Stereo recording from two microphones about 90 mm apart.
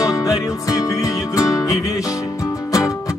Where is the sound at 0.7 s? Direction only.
40° left (ahead or behind).